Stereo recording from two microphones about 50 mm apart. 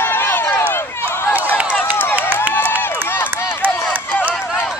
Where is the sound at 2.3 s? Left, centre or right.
Right.